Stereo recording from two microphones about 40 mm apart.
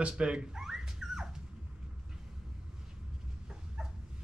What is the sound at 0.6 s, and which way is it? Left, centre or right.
Dog, centre.